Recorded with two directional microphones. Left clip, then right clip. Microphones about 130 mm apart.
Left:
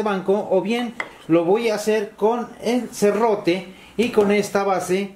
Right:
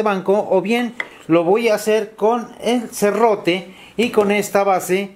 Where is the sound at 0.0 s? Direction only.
35° right (ahead or behind).